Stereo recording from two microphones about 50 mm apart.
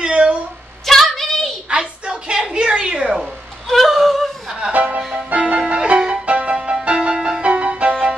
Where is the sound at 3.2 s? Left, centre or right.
Centre.